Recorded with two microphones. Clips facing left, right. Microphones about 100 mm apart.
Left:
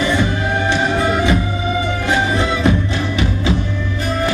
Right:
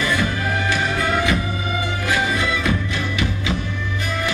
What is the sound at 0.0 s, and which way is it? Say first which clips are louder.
Music: left 4 dB; 25° left (ahead or behind).